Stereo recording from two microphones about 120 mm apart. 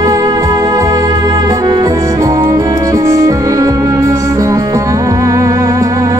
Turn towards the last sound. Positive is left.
turn(degrees=-30)  # may be behind; listen again after turning